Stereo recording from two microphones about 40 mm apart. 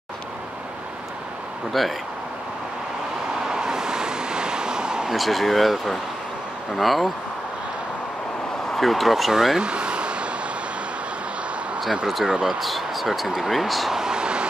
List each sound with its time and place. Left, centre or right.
1.8 s speech: centre
3.4 s waves: centre
5.1 s speech: centre
8.7 s speech: centre
9.6 s a sound: right
12.3 s speech: centre
12.5 s speech: centre
13.9 s vehicle: centre